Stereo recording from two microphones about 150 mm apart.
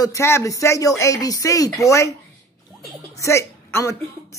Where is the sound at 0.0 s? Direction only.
20° left (ahead or behind).